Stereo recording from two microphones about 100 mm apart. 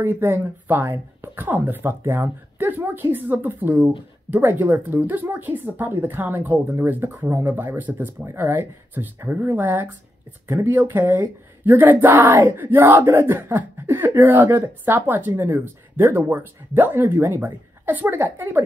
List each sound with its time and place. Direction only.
0.0 s speech: 20° right (ahead or behind)